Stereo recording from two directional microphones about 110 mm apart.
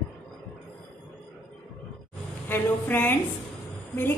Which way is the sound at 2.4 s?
20° left (ahead or behind).